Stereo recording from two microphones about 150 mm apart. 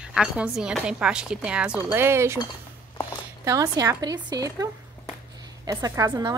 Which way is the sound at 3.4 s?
20° right (ahead or behind).